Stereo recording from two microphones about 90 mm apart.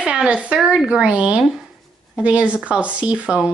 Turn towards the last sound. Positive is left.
turn(degrees=-10)  # may be behind; listen again after turning